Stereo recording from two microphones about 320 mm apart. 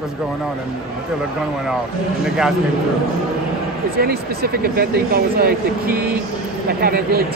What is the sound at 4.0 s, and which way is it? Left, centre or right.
Speech, right.